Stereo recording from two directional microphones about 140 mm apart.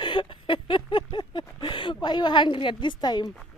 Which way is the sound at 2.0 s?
30° left (ahead or behind).